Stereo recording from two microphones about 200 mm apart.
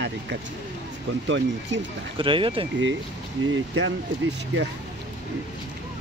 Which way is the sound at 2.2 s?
25° right (ahead or behind).